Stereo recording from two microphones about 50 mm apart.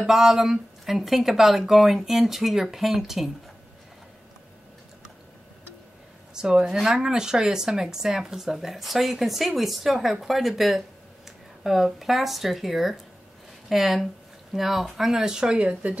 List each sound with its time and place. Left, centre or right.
0.0 s speech: centre
6.3 s speech: centre